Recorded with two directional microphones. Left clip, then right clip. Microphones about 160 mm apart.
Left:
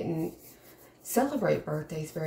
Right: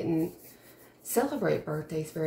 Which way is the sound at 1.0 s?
10° right (ahead or behind).